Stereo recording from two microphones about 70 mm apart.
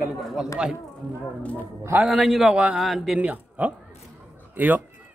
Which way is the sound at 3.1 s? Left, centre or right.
Right.